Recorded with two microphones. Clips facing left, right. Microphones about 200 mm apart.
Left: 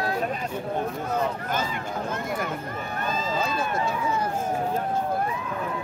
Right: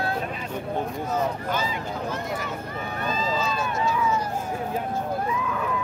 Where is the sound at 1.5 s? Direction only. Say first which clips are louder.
Even; 55° left (ahead or behind).